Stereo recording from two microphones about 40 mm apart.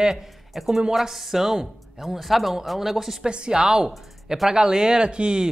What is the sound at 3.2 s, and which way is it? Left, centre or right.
Speech, right.